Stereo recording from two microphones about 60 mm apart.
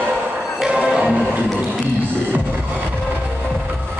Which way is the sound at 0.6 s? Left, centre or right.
Centre.